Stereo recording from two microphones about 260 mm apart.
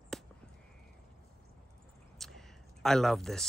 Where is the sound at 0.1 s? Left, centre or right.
Centre.